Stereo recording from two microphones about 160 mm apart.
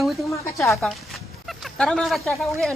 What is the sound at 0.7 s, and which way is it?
A woman's voice, centre (ahead or behind).